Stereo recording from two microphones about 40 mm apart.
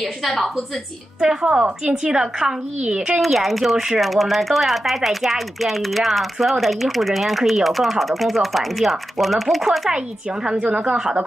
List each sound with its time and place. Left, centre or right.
0.2 s speech: centre
1.3 s a woman's voice: centre
3.2 s speech: centre